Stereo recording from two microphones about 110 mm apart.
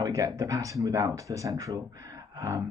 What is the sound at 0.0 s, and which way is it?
Speech, 30° right (ahead or behind).